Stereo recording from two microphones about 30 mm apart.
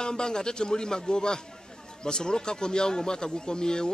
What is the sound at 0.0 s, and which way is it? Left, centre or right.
Speech, left.